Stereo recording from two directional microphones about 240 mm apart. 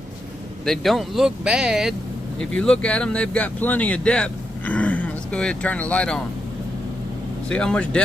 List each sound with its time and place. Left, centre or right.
0.7 s speech: centre
7.4 s speech: centre